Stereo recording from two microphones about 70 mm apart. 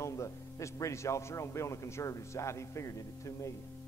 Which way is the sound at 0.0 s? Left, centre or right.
Left.